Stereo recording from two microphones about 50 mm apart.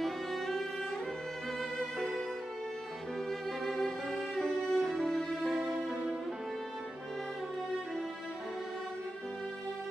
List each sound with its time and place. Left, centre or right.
0.0 s music: centre
3.3 s music: centre
5.5 s music: centre